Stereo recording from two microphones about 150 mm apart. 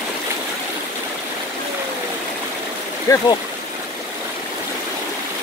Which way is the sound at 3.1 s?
20° left (ahead or behind).